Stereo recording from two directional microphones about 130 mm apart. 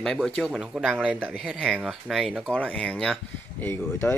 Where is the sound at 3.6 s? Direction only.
15° left (ahead or behind).